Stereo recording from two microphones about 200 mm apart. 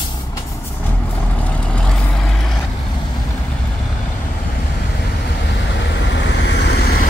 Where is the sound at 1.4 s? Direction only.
5° left (ahead or behind).